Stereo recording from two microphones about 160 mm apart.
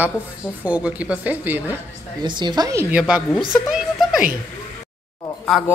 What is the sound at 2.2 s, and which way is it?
Speech, 30° right (ahead or behind).